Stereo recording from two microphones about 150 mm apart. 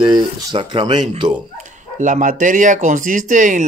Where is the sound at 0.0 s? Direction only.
30° right (ahead or behind).